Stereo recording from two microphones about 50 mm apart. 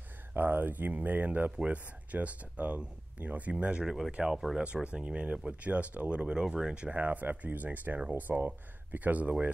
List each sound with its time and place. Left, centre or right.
0.3 s speech: right; by 4.3 s centre
4.8 s speech: right
7.0 s speech: right